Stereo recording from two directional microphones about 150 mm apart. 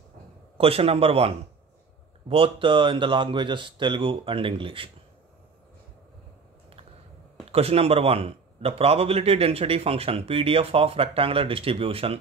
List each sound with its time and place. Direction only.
0.6 s a man's voice: 40° right (ahead or behind)
7.4 s a man's voice: 40° right (ahead or behind)